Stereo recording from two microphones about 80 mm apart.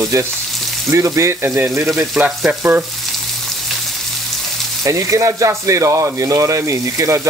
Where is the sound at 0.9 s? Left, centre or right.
Right.